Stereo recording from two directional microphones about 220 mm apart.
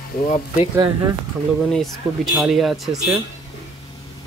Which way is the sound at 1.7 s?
Centre (ahead or behind).